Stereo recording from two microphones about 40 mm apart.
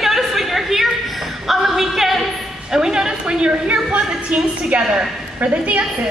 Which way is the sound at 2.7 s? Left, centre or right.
Centre.